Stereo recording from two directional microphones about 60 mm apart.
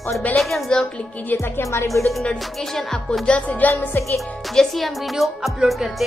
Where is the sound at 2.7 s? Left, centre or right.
Centre.